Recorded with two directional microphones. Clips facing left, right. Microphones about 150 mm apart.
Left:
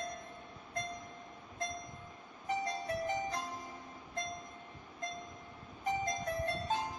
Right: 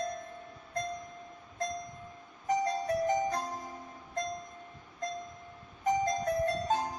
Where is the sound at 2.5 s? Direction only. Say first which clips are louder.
Right 7 dB; 40° right (ahead or behind).